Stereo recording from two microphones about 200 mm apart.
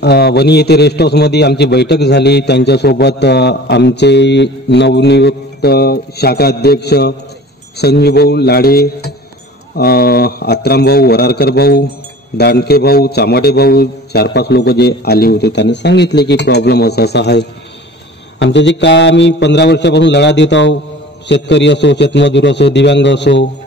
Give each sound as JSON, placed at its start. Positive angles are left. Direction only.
{"t": 0.0, "sound": "a man's voice", "side_deg": 55}